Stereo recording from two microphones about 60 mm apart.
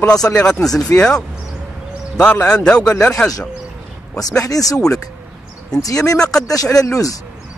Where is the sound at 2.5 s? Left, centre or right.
Centre.